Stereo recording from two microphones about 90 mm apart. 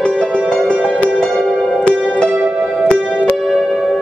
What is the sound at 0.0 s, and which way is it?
Music, 10° left (ahead or behind).